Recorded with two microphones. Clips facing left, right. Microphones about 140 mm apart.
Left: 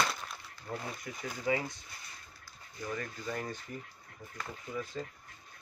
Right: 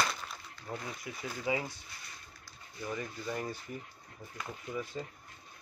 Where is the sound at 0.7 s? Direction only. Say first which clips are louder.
Left 1 dB; 20° right (ahead or behind).